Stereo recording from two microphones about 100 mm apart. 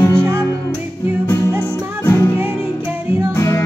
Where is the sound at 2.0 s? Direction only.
30° left (ahead or behind).